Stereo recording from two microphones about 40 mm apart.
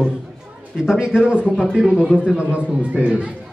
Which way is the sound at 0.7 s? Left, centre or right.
Centre.